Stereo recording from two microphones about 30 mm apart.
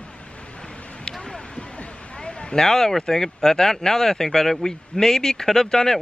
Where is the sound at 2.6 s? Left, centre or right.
Centre.